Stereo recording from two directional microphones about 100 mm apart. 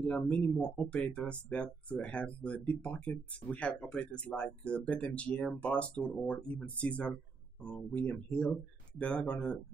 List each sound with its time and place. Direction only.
0.0 s speech: 15° left (ahead or behind)